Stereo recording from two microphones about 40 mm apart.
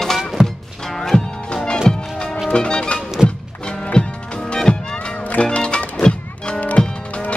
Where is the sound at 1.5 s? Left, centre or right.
Left.